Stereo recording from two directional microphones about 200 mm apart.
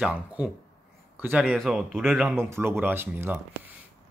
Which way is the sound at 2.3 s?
10° right (ahead or behind).